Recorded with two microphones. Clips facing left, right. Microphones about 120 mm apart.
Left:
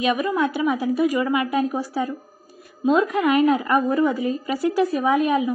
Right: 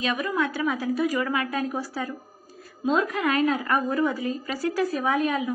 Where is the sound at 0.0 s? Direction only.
15° left (ahead or behind).